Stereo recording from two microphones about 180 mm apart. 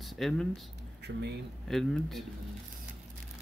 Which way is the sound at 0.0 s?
Centre (ahead or behind).